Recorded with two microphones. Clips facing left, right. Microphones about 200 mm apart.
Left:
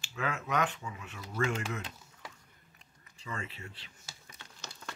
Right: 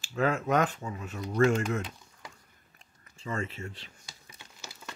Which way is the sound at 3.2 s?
45° right (ahead or behind).